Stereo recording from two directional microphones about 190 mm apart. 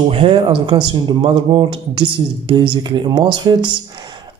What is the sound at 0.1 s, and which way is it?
Speech, 25° right (ahead or behind).